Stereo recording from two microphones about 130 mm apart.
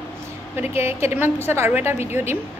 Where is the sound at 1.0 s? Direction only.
20° right (ahead or behind).